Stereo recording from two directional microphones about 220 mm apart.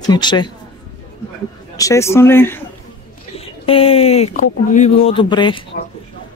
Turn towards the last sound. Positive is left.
turn(degrees=20)  # may be behind; listen again after turning